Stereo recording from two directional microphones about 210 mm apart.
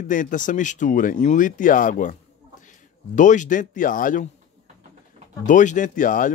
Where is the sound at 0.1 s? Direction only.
40° left (ahead or behind).